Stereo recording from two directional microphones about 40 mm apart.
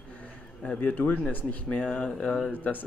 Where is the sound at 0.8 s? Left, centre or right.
Left.